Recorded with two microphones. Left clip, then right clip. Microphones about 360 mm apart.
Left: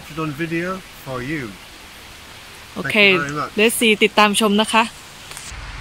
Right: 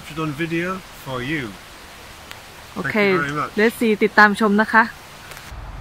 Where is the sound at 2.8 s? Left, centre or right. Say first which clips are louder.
Left 4 dB; centre.